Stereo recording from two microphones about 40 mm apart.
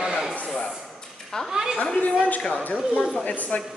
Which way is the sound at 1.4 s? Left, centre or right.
Centre.